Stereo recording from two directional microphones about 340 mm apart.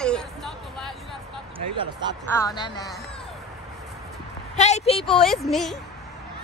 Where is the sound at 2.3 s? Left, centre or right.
Centre.